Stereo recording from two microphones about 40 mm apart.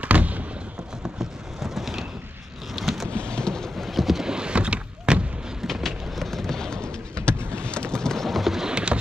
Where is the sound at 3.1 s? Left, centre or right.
Left.